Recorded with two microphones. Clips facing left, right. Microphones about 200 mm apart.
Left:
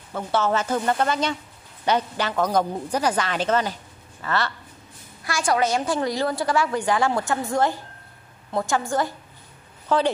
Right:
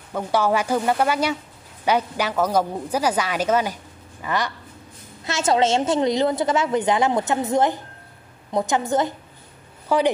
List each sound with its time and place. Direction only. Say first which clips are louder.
0.1 s a woman's voice: right 2 dB; 10° right (ahead or behind)